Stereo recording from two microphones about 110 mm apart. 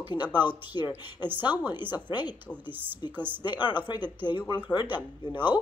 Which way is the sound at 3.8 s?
40° left (ahead or behind).